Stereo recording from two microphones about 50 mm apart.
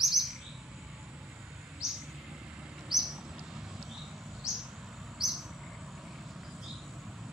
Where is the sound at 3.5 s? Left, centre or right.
Centre.